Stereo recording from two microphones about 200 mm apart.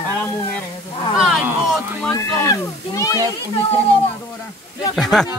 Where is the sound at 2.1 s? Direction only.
15° left (ahead or behind).